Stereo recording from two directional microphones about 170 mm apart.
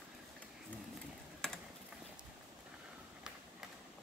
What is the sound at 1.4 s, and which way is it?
Typing, 5° left (ahead or behind).